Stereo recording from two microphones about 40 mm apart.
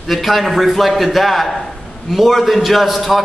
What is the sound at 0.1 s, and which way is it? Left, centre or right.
A man's voice, centre.